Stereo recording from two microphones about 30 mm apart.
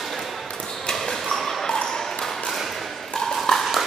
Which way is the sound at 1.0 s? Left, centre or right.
Centre.